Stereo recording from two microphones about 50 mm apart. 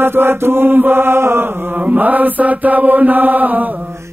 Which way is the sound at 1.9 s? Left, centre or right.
Right.